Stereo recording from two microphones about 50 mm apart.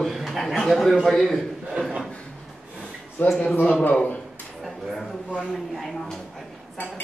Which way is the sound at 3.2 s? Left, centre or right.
Left.